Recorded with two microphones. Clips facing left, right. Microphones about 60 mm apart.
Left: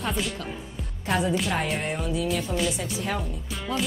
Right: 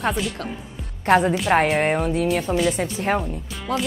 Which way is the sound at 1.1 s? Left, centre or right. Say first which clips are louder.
Right 8 dB; right.